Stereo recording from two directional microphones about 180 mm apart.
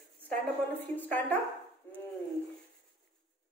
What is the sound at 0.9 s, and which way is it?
Speech, 10° left (ahead or behind).